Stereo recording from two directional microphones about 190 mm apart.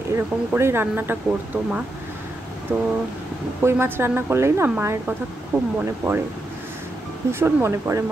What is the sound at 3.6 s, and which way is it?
A woman's voice, 10° right (ahead or behind).